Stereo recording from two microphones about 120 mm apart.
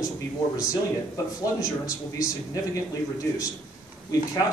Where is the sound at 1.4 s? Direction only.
30° left (ahead or behind).